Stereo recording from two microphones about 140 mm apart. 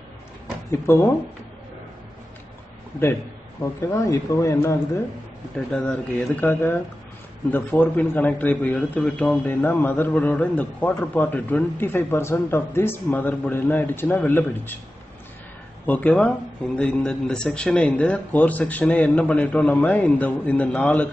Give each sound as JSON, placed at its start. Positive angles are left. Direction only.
{"t": 0.7, "sound": "speech", "side_deg": 20}
{"t": 3.6, "sound": "speech", "side_deg": 20}
{"t": 5.7, "sound": "a man's voice", "side_deg": 10}
{"t": 15.9, "sound": "a man's voice", "side_deg": 10}